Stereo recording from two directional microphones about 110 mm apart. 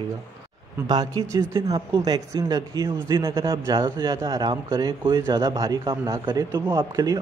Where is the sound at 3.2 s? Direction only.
25° right (ahead or behind).